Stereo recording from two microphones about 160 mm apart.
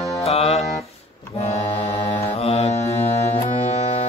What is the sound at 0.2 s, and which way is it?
Music, 40° left (ahead or behind).